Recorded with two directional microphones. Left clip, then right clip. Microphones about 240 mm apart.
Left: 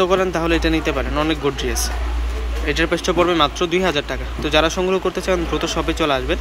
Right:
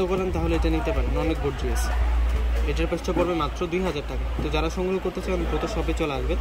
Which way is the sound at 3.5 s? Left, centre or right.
Centre.